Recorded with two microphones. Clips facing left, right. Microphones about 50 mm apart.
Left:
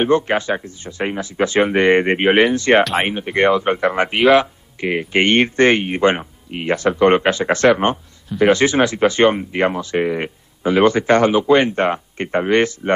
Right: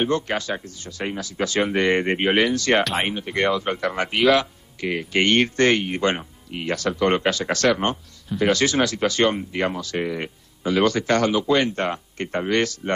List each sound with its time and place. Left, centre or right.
0.0 s speech: left
2.8 s speech: centre
3.1 s speech: left